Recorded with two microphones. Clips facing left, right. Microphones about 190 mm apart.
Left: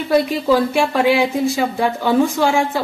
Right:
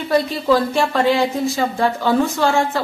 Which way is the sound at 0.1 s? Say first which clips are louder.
Left 1 dB; 10° left (ahead or behind).